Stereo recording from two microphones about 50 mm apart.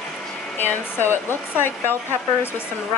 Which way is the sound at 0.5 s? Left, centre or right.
Left.